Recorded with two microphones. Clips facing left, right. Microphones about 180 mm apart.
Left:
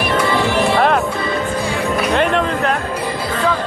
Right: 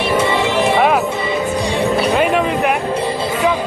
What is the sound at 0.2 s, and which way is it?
Music, 20° right (ahead or behind).